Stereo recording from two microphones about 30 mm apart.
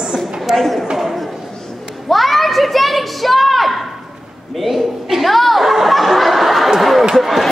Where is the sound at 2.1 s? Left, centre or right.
Centre.